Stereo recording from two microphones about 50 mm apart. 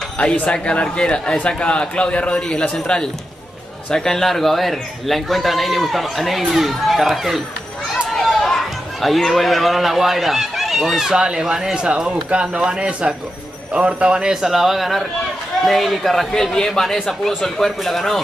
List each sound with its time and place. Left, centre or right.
0.2 s a man's voice: centre
11.1 s a man's voice: centre